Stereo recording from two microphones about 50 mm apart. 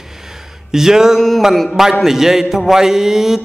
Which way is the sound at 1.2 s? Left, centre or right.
Centre.